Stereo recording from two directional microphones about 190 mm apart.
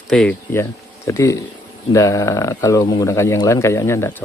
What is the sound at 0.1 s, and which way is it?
Speech, 5° left (ahead or behind).